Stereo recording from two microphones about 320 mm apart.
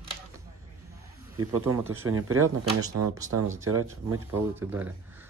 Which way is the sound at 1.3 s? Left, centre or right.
Centre.